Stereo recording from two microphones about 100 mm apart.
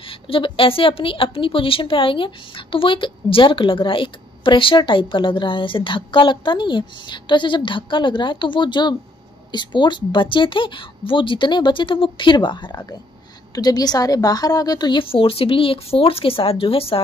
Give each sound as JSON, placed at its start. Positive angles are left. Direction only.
{"t": 0.0, "sound": "a woman's voice", "side_deg": 65}